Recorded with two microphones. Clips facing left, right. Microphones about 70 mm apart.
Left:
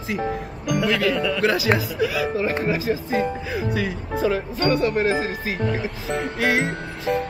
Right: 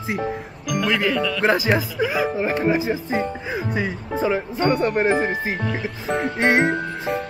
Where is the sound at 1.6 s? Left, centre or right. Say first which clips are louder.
Even; right.